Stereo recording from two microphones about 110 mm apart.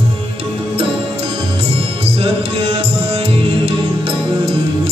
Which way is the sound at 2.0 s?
55° right (ahead or behind).